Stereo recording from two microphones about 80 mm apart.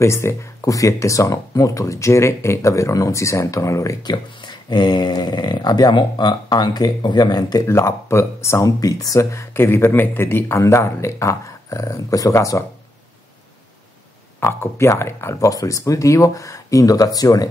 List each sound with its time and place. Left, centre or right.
0.0 s speech: left
4.0 s speech: left
7.6 s speech: left
14.4 s speech: left
15.5 s speech: left